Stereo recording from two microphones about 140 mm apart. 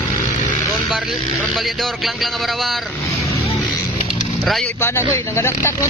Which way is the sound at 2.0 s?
Centre (ahead or behind).